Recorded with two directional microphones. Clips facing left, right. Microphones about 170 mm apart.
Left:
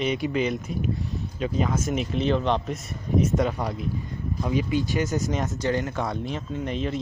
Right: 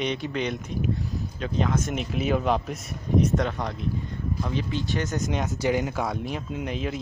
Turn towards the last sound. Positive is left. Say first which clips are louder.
# left 2 dB
turn(degrees=-5)  # may be behind; listen again after turning